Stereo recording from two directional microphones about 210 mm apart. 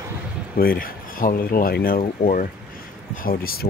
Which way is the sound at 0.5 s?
45° left (ahead or behind).